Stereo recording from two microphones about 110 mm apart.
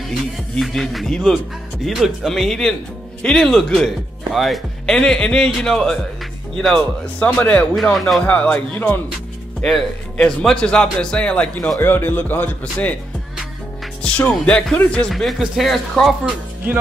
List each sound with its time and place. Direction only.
0.6 s speech: centre (ahead or behind)
9.6 s speech: 5° left (ahead or behind)
14.0 s speech: 10° left (ahead or behind)